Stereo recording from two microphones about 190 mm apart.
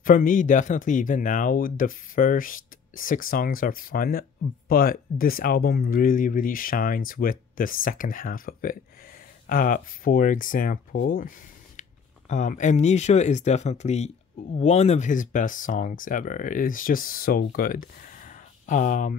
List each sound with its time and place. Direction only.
0.0 s speech: 45° left (ahead or behind)